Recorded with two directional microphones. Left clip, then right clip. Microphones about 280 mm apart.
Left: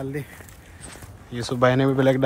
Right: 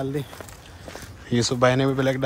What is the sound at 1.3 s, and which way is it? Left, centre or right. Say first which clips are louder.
Speech: even; centre.